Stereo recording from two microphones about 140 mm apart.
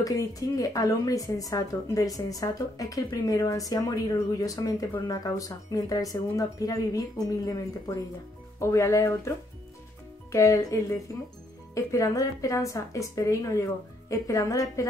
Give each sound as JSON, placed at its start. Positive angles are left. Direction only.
{"t": 0.0, "sound": "speech", "side_deg": 25}
{"t": 10.3, "sound": "speech", "side_deg": 25}